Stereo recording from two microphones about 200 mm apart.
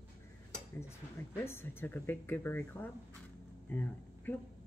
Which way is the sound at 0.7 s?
10° left (ahead or behind).